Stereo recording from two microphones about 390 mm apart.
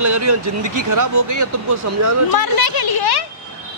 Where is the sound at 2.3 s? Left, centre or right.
Left.